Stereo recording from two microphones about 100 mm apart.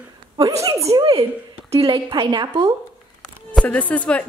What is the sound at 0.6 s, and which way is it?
Speech, 30° right (ahead or behind).